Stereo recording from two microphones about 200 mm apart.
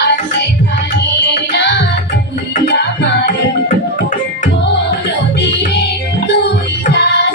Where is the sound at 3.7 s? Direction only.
40° left (ahead or behind).